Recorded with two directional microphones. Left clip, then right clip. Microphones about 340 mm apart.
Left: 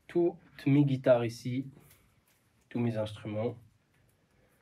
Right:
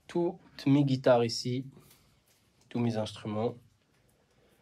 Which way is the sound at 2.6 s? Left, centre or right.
Centre.